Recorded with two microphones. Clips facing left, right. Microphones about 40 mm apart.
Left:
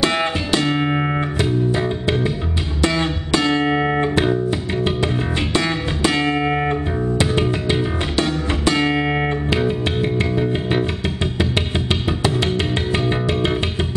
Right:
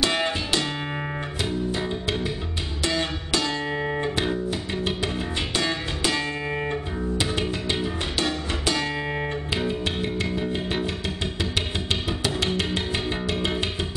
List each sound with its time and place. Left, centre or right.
0.0 s music: left
1.7 s music: left
4.0 s music: left
5.6 s music: left
7.2 s music: centre
8.6 s music: left
9.5 s music: centre
11.9 s music: centre